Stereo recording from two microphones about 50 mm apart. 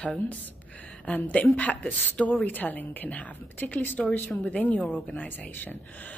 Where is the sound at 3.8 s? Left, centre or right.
Left.